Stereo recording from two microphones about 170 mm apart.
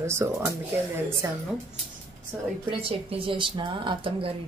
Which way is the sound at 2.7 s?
30° right (ahead or behind).